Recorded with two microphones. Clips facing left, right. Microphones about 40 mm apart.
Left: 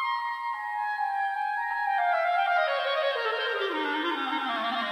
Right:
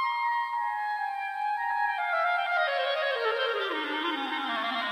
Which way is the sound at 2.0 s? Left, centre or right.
Centre.